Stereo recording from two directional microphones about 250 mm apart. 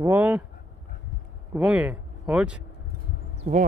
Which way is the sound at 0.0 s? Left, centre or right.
Centre.